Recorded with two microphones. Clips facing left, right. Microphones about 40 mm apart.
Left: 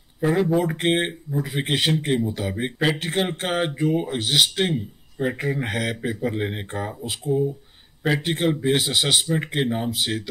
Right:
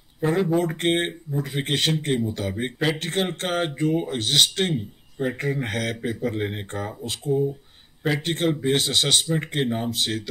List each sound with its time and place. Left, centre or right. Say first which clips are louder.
0.2 s speech: left 1 dB; centre